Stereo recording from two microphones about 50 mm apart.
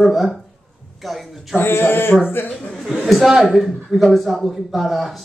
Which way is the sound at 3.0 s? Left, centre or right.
Centre.